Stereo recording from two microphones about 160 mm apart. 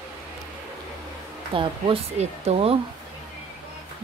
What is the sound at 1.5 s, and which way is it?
Speech, 35° right (ahead or behind).